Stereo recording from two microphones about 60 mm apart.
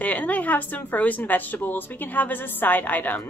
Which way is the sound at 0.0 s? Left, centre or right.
Left.